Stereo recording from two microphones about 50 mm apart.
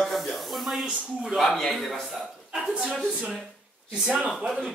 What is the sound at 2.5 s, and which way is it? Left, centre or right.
Speech, centre.